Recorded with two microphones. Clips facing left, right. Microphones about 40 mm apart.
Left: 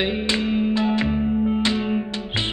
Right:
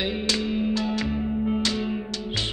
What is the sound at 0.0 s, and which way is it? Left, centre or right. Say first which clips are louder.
Music: left 4 dB; left.